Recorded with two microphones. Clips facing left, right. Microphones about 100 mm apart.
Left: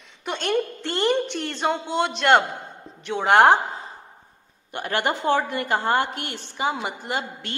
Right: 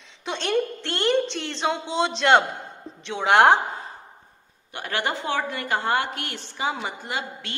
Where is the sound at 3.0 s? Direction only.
Centre (ahead or behind).